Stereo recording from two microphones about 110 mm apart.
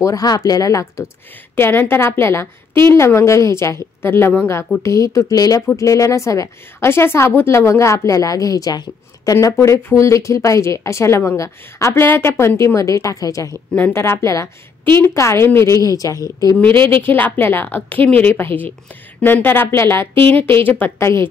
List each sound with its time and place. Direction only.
0.0 s a woman's voice: 35° left (ahead or behind)
16.6 s speech: 50° right (ahead or behind)
17.0 s a woman's voice: 20° left (ahead or behind)